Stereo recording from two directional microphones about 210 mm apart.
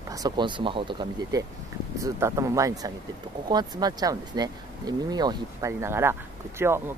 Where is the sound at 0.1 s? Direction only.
20° right (ahead or behind).